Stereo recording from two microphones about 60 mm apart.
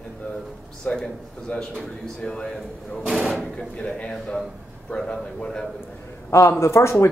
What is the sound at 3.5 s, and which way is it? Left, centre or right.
A man's voice, centre.